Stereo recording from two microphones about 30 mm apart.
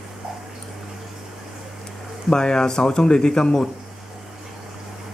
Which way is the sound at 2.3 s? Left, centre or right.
Left.